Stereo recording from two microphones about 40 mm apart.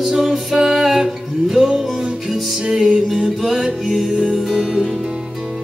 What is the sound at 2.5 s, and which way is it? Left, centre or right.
Music, centre.